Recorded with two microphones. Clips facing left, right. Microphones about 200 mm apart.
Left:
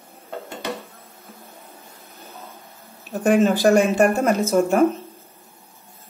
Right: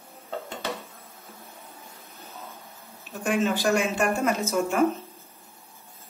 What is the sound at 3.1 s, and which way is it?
Speech, 40° left (ahead or behind).